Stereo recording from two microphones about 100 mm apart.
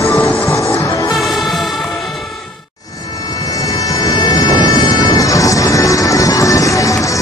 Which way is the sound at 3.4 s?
35° left (ahead or behind).